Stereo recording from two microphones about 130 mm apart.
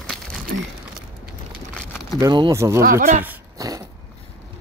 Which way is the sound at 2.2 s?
30° right (ahead or behind).